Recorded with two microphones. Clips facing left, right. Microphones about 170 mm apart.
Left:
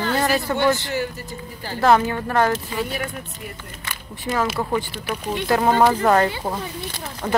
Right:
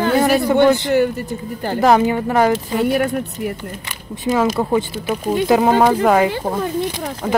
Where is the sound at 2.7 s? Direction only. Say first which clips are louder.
Right 10 dB; 55° right (ahead or behind).